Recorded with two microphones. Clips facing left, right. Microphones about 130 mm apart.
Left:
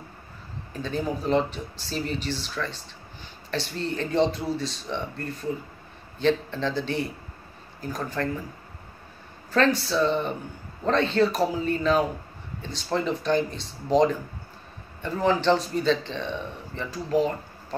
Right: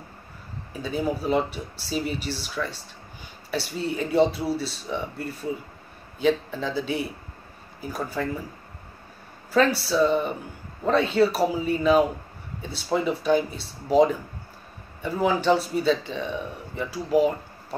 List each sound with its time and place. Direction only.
0.7 s speech: 10° right (ahead or behind)
9.5 s speech: 10° right (ahead or behind)